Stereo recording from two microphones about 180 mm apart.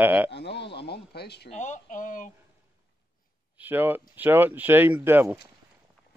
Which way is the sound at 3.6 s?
10° right (ahead or behind).